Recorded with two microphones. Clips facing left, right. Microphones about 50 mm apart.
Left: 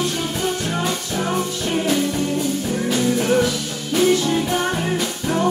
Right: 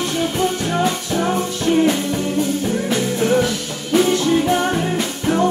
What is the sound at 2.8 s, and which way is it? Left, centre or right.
Music, right.